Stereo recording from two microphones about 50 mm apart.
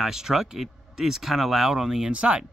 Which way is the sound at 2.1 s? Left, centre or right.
Right.